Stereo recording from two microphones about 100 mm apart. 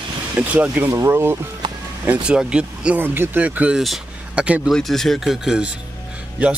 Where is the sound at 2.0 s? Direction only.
15° right (ahead or behind).